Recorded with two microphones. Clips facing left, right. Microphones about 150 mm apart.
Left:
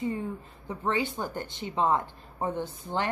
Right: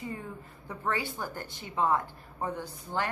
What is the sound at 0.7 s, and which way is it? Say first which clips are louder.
Speech: left 4 dB; 20° left (ahead or behind).